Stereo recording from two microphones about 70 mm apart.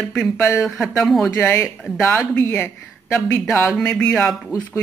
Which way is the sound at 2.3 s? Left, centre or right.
Left.